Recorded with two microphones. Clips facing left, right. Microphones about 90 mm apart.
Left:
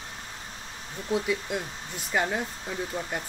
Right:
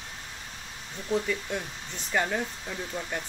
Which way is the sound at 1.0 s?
10° left (ahead or behind).